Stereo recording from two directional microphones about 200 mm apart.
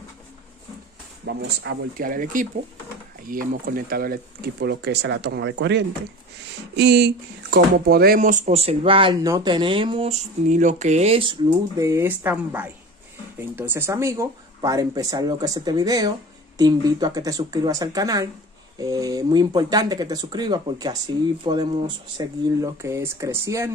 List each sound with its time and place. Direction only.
1.2 s speech: 60° right (ahead or behind)
2.0 s speech: 45° right (ahead or behind); by 23.7 s 15° right (ahead or behind)